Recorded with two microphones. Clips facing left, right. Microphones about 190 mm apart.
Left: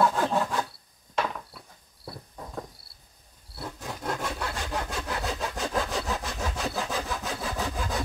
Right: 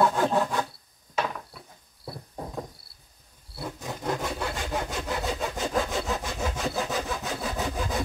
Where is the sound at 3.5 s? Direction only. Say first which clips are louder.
Right 2 dB; centre (ahead or behind).